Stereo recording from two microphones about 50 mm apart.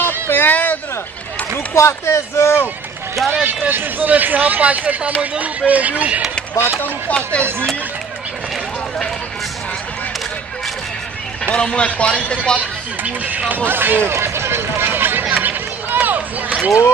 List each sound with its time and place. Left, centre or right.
0.0 s a sound: left
1.7 s speech: left
3.6 s speech: right
11.4 s speech: left
13.0 s speech: right
13.7 s speech: right
14.1 s run: right
16.4 s a sound: right